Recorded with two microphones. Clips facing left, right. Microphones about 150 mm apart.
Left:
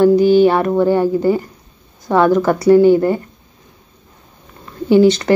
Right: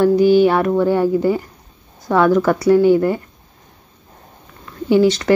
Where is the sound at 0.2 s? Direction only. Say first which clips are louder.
Left 1 dB; 10° right (ahead or behind).